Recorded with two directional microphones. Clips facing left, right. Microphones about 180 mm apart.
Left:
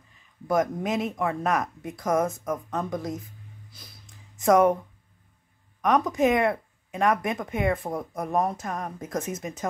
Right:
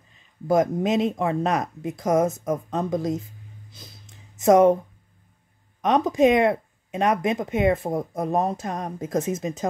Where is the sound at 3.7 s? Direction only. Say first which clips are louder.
Right 4 dB; 25° right (ahead or behind).